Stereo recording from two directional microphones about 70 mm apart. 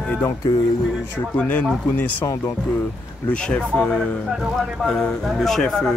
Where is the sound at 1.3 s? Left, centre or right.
Left.